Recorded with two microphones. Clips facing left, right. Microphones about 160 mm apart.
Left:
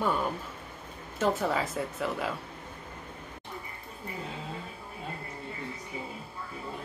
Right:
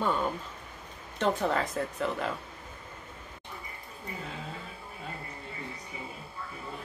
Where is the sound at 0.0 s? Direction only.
5° left (ahead or behind).